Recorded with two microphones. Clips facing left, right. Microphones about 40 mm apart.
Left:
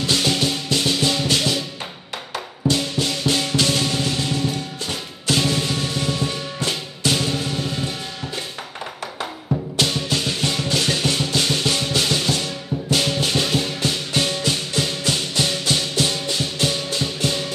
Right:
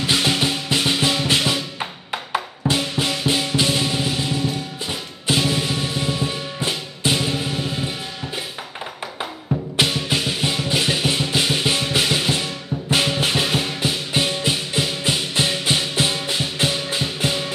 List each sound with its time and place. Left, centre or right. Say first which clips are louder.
0.0 s music: right 1 dB; centre
2.3 s drum: even; centre
5.4 s music: even; centre
9.8 s music: right 2 dB; centre